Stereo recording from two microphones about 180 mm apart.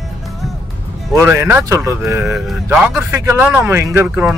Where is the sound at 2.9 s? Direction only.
15° right (ahead or behind).